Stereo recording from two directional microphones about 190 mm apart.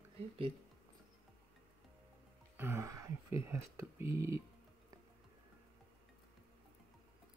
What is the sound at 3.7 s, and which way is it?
Speech, 15° right (ahead or behind).